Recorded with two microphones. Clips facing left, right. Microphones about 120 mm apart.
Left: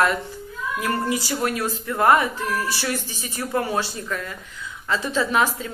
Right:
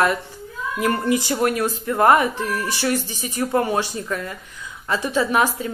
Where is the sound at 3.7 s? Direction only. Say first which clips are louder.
Right 3 dB; 15° right (ahead or behind).